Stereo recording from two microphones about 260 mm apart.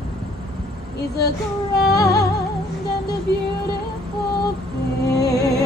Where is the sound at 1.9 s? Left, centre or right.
Centre.